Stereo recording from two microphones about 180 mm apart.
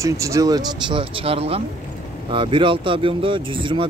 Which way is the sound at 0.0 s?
15° right (ahead or behind).